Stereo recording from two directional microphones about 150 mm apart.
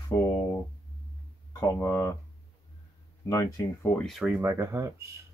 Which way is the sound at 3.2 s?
20° left (ahead or behind).